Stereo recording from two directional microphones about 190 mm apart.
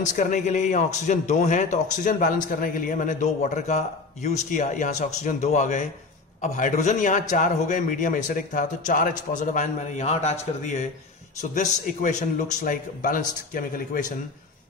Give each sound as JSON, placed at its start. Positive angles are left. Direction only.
{"t": 0.0, "sound": "speech", "side_deg": 40}